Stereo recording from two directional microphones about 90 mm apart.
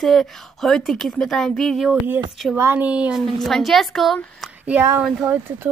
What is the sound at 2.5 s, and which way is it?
Speech, 30° right (ahead or behind).